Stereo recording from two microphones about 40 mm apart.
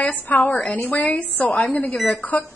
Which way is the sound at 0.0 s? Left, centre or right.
Left.